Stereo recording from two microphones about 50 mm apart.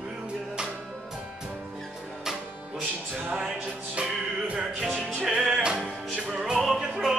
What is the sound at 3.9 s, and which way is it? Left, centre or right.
Music, right.